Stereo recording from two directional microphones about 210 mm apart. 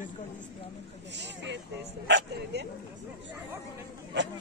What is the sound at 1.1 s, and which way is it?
Speech, 55° right (ahead or behind).